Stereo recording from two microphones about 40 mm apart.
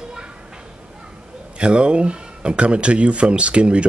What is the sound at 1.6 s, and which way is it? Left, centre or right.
Speech, right.